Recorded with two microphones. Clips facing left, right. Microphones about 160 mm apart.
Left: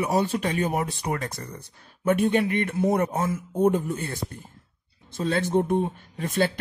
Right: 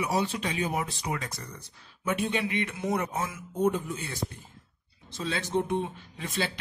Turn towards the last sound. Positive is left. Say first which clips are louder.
# left 8 dB
turn(degrees=50)  # may be behind; listen again after turning